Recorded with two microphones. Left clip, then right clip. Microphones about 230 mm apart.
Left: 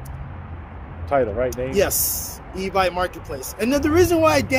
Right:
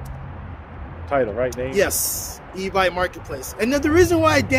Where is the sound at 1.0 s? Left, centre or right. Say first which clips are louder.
Left 1 dB; centre.